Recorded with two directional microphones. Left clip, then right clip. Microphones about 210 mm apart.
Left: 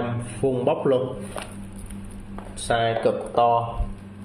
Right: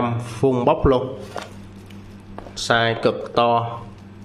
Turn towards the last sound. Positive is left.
turn(degrees=-25)  # may be behind; listen again after turning